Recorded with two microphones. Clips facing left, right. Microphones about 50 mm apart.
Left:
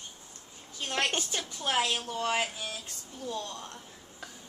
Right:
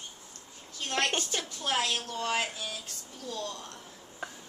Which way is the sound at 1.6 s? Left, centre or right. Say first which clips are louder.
Left 2 dB; centre.